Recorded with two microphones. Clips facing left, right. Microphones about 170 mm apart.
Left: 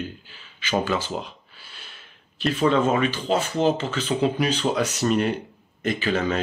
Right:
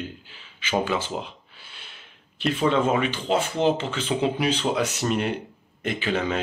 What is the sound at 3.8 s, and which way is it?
Speech, 25° right (ahead or behind).